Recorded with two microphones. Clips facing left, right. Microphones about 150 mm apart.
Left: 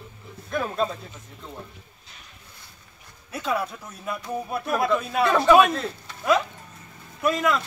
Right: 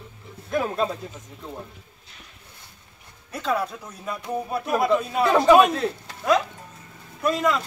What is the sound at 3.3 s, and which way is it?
Speech, 10° left (ahead or behind).